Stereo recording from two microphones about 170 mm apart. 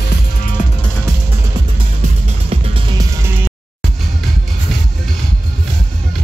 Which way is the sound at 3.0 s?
15° right (ahead or behind).